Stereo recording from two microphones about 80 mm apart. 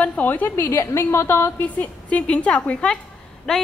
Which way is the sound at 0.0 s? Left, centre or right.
Centre.